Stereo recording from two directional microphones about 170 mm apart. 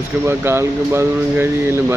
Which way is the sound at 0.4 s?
15° right (ahead or behind).